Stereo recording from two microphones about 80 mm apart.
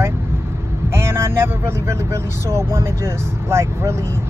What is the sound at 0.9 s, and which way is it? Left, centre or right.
Vehicle, right.